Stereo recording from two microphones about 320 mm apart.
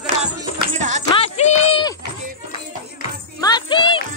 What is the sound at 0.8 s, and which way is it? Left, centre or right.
Music, right.